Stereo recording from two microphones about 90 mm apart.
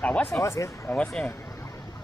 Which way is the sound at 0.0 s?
15° left (ahead or behind).